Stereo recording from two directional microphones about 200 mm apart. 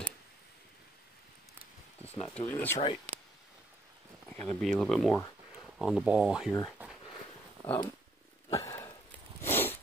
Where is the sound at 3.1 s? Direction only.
35° right (ahead or behind).